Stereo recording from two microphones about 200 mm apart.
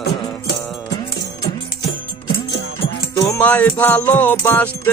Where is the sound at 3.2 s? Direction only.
10° left (ahead or behind).